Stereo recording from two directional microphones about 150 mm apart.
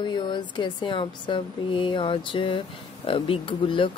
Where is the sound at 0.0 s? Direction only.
30° left (ahead or behind).